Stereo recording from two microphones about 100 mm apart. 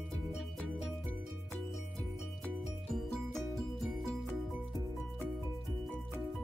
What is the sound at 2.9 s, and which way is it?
Music, centre (ahead or behind).